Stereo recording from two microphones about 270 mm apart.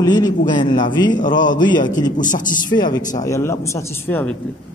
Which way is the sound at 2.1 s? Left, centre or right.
Left.